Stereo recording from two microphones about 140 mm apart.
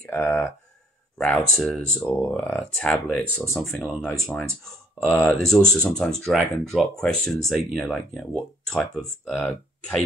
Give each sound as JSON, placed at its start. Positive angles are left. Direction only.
{"t": 0.0, "sound": "speech", "side_deg": 15}